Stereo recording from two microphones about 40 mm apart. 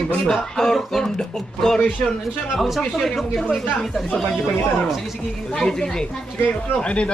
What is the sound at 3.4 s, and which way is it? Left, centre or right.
Speech, centre.